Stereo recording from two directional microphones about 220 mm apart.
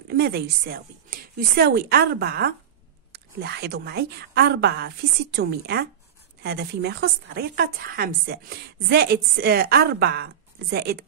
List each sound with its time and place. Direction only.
0.1 s speech: 45° right (ahead or behind)
3.1 s a sound: 45° right (ahead or behind)
3.8 s speech: 45° right (ahead or behind)